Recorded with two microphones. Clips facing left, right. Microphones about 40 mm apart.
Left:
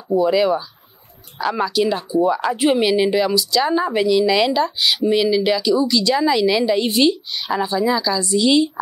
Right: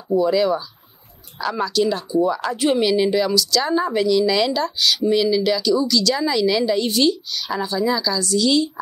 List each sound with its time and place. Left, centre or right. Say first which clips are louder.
0.1 s speech: left 1 dB; centre